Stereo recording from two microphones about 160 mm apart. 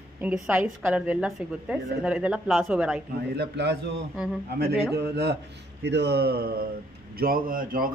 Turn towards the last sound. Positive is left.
turn(degrees=-60)  # may be behind; listen again after turning